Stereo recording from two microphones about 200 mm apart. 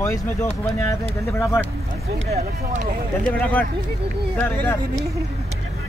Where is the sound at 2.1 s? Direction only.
35° right (ahead or behind).